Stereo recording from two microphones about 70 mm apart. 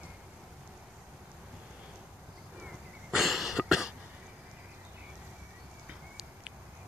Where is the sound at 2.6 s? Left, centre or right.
Centre.